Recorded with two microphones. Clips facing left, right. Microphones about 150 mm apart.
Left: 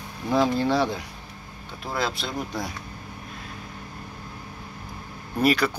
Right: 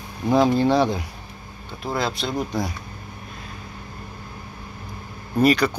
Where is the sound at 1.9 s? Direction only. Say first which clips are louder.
Right 3 dB; centre (ahead or behind).